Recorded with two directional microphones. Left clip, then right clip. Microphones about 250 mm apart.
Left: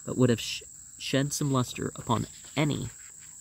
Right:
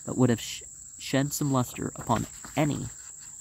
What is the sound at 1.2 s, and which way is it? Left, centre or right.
Speech, left.